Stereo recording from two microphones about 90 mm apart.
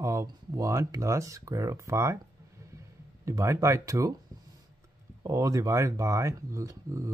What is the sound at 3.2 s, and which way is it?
Speech, 35° right (ahead or behind).